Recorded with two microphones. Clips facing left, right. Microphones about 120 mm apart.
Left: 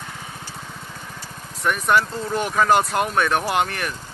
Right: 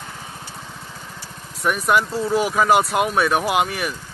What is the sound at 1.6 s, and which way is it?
Speech, 10° right (ahead or behind).